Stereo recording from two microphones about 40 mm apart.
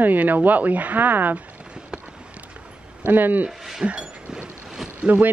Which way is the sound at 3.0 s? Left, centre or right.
Right.